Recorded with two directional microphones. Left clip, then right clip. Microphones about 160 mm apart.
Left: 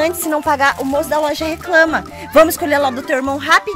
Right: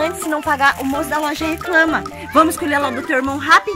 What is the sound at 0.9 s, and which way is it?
Speech, 40° left (ahead or behind).